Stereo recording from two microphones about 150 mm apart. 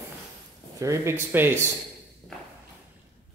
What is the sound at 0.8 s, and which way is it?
Speech, 20° right (ahead or behind).